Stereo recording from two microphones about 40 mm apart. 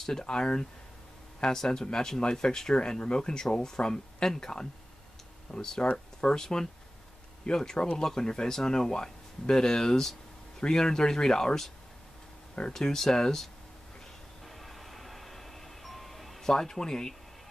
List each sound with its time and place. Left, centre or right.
0.0 s speech: centre
12.7 s speech: centre
14.6 s music: centre
16.4 s speech: centre